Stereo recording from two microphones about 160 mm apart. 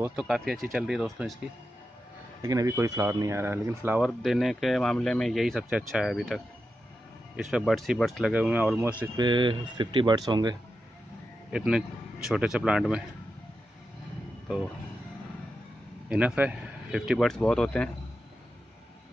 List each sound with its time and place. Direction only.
0.0 s speech: 5° right (ahead or behind)
2.4 s speech: 20° right (ahead or behind)
4.0 s speech: centre (ahead or behind)
7.5 s speech: centre (ahead or behind)
9.1 s speech: 30° right (ahead or behind)
11.5 s speech: 5° right (ahead or behind)
16.1 s speech: 5° right (ahead or behind)